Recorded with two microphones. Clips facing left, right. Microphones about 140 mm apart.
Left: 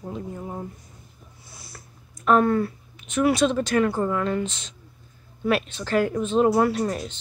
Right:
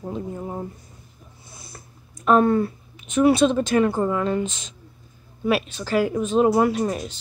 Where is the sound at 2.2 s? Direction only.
25° right (ahead or behind).